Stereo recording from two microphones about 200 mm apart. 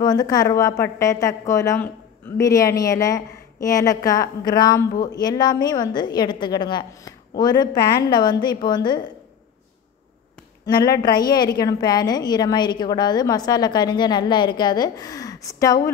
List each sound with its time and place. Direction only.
0.0 s a woman's voice: 20° left (ahead or behind)
10.6 s a woman's voice: 20° left (ahead or behind)